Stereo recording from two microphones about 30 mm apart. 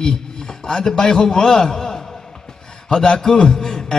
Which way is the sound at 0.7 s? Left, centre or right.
Left.